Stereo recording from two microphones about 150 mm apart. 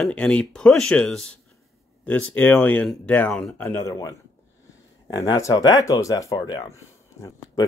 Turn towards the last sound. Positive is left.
turn(degrees=20)  # may be behind; listen again after turning